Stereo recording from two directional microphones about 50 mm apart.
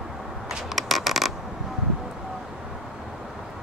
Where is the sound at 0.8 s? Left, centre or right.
Centre.